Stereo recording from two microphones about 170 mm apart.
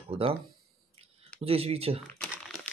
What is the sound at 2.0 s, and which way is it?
Crumpling, 10° left (ahead or behind).